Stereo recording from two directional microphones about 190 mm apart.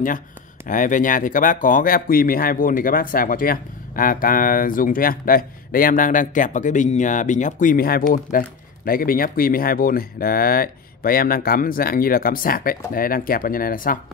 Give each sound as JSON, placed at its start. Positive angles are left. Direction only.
{"t": 0.7, "sound": "speech", "side_deg": 45}